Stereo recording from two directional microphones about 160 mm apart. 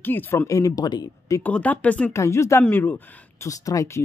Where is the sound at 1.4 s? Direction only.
10° left (ahead or behind).